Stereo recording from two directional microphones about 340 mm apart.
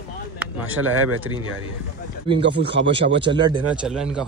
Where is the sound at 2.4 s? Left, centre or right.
Right.